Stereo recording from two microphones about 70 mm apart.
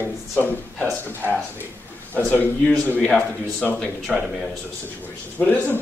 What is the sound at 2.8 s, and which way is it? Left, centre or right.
Speech, left.